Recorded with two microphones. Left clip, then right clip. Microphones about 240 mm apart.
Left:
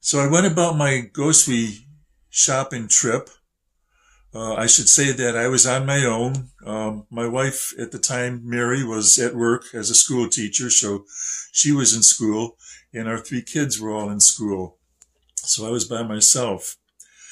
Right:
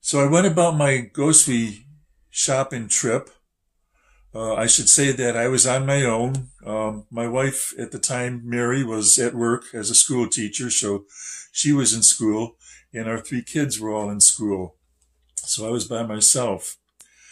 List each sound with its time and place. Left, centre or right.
0.0 s speech: centre